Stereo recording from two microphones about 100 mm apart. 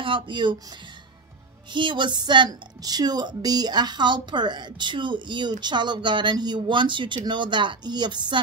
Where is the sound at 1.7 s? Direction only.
55° right (ahead or behind).